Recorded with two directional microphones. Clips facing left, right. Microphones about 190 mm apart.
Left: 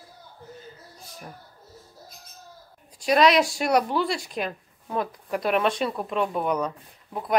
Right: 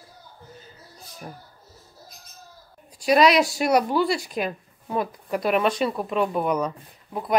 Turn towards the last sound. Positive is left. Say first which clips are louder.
# right 2 dB
turn(degrees=0)  # may be behind; listen again after turning